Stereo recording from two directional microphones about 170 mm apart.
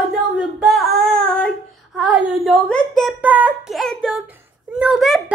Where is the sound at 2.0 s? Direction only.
5° right (ahead or behind).